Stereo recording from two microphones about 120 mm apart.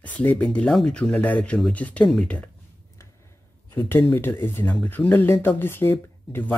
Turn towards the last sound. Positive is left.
turn(degrees=20)  # may be behind; listen again after turning